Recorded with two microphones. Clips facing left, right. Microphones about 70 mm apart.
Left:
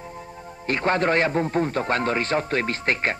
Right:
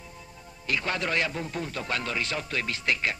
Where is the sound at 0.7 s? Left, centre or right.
Left.